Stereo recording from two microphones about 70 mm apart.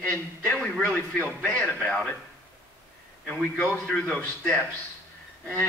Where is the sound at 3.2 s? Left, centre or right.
Left.